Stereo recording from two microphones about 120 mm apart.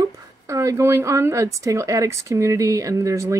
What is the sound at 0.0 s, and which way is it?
A woman's voice, 25° right (ahead or behind).